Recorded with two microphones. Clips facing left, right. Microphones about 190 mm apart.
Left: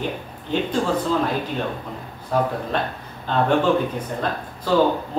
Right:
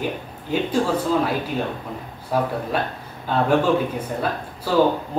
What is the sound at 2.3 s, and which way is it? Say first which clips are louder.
A man's voice: even; 10° right (ahead or behind).